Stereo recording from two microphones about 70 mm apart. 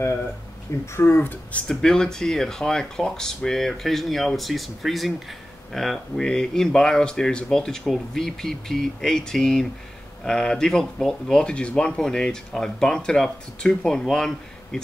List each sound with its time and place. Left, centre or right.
0.9 s speech: left
1.7 s speech: centre